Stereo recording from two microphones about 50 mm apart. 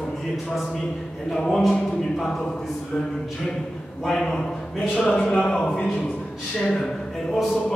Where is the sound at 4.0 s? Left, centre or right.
Centre.